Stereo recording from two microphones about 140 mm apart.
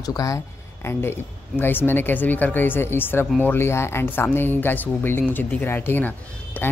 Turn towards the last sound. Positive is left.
turn(degrees=10)  # may be behind; listen again after turning